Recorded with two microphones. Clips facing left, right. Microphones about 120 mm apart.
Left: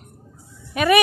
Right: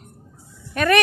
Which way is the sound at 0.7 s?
10° left (ahead or behind).